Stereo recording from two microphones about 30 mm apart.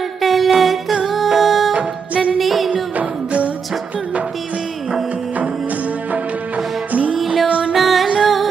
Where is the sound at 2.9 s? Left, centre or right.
Right.